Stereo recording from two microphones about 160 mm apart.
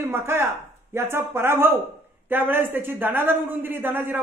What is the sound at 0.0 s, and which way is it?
A woman's voice, 15° right (ahead or behind).